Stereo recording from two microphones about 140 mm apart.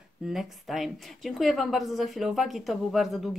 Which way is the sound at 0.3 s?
Centre (ahead or behind).